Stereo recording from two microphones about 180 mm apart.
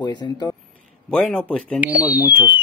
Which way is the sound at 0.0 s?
25° left (ahead or behind).